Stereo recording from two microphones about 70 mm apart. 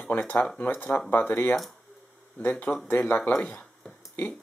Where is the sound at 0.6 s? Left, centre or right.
Left.